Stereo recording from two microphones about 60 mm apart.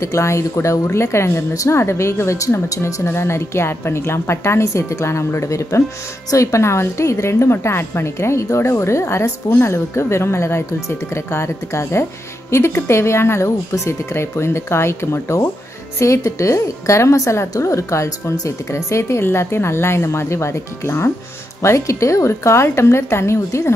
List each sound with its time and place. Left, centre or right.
0.0 s speech: left
2.8 s speech: left